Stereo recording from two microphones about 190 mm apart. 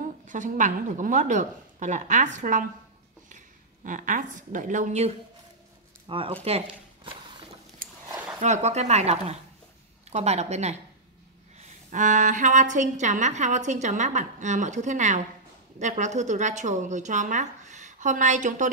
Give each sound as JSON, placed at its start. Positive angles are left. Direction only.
{"t": 0.3, "sound": "a woman's voice", "side_deg": -40}
{"t": 6.0, "sound": "speech", "side_deg": -30}
{"t": 8.4, "sound": "a woman's voice", "side_deg": -35}
{"t": 11.9, "sound": "a woman's voice", "side_deg": -40}